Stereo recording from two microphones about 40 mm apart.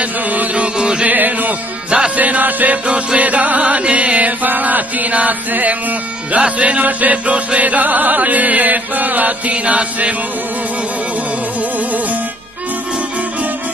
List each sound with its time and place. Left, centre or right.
0.0 s mantra: right
0.6 s chant: right
1.1 s music: right
1.9 s music: right
2.1 s music: right
4.5 s music: right
9.5 s music: right